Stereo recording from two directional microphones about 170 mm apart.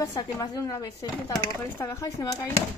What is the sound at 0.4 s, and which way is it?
Speech, 20° left (ahead or behind).